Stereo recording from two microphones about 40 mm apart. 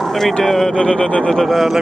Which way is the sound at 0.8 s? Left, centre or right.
Left.